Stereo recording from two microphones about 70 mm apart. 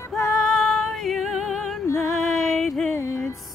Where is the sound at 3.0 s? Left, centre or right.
Left.